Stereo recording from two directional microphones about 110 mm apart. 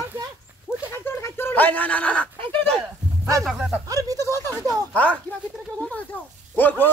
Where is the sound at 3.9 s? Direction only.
30° right (ahead or behind).